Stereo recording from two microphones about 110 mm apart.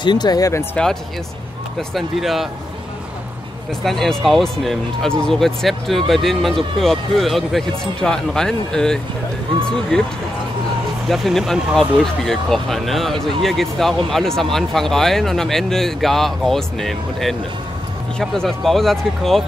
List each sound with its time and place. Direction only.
0.0 s speech: 40° left (ahead or behind)
1.8 s speech: centre (ahead or behind)
3.8 s speech: centre (ahead or behind)